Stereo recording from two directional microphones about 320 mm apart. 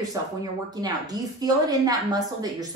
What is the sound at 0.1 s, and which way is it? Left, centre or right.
A woman's voice, centre.